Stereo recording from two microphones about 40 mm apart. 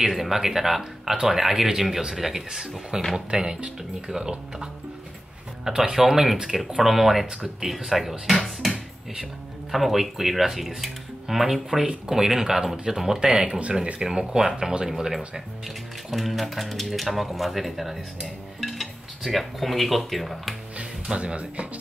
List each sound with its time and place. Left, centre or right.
0.0 s speech: centre
1.1 s speech: centre
5.7 s speech: centre
6.8 s speech: centre
8.5 s music: centre
9.1 s speech: centre
16.1 s speech: centre
21.2 s speech: right